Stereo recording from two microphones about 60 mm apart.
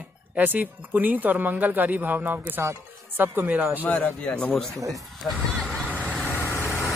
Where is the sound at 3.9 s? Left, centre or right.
Left.